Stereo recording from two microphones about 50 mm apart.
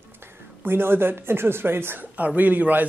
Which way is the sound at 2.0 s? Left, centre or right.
Right.